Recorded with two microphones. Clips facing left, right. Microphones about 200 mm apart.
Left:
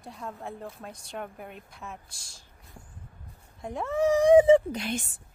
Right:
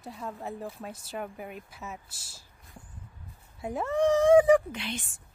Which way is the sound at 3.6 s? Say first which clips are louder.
Right 1 dB; 5° right (ahead or behind).